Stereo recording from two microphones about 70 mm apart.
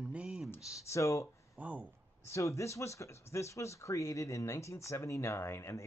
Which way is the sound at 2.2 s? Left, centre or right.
Left.